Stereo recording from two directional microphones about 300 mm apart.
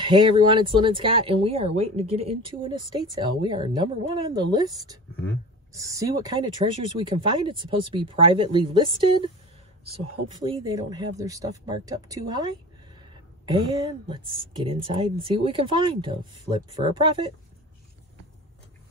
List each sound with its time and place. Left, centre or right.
0.0 s speech: centre
10.4 s speech: centre